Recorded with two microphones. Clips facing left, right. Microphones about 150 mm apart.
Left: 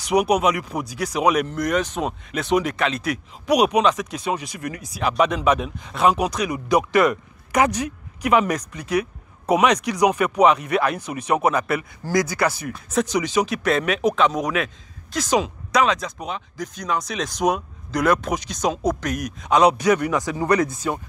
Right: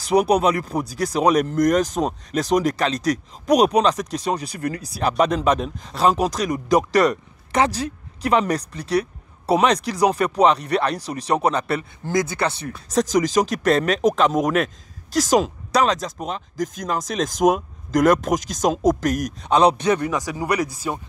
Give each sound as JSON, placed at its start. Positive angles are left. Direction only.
{"t": 0.0, "sound": "speech", "side_deg": -35}
{"t": 18.6, "sound": "speech", "side_deg": 0}
{"t": 19.2, "sound": "speech", "side_deg": -30}